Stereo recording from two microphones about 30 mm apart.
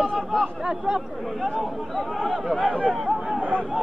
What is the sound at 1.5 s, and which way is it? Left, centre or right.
Speech, centre.